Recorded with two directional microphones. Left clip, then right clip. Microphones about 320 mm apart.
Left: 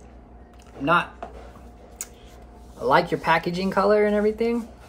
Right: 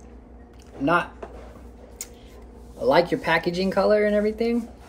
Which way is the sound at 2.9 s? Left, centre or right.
Left.